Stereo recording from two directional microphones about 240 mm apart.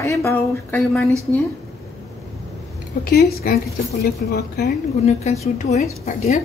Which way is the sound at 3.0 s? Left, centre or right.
Left.